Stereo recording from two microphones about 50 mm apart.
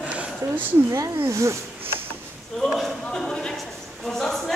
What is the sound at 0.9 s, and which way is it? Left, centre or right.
Speech, right.